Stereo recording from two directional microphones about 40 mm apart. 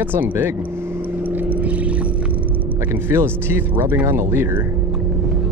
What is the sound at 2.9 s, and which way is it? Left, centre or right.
Speech, right.